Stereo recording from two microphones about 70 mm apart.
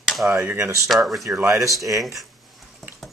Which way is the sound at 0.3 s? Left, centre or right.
Right.